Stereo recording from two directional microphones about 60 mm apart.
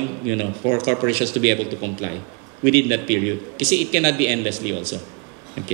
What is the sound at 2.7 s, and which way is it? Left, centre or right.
Speech, right.